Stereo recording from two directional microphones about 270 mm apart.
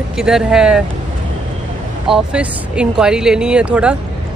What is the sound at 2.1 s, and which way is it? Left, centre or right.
Speech, centre.